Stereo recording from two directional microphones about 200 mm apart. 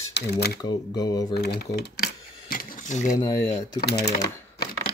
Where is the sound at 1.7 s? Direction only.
50° left (ahead or behind).